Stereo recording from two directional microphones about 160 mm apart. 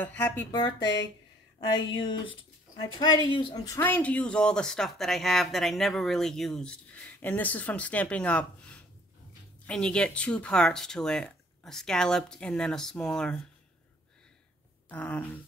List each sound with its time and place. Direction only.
0.0 s speech: 10° left (ahead or behind)
0.5 s speech: 25° left (ahead or behind)
0.7 s speech: 90° left
2.8 s speech: 25° left (ahead or behind); by 13.4 s 5° left (ahead or behind)
14.9 s speech: 10° left (ahead or behind)